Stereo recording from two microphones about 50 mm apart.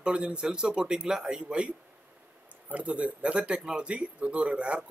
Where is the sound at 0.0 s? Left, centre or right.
Centre.